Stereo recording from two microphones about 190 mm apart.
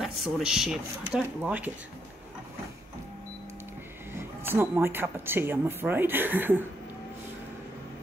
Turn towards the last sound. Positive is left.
turn(degrees=-10)  # may be behind; listen again after turning